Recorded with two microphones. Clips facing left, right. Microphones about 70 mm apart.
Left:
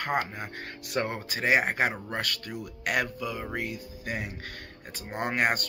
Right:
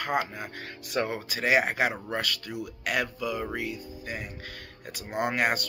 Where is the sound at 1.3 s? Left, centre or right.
Left.